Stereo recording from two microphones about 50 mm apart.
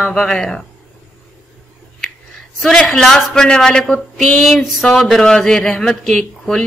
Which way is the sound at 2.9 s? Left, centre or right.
Centre.